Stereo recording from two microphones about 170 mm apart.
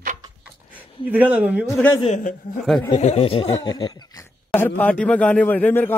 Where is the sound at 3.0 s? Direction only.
40° left (ahead or behind).